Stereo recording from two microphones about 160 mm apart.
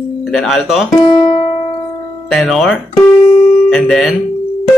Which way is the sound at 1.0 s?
30° left (ahead or behind).